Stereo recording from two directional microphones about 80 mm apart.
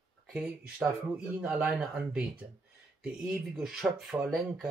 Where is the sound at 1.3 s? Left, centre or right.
Centre.